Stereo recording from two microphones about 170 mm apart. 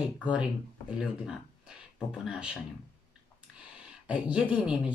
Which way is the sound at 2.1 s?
5° right (ahead or behind).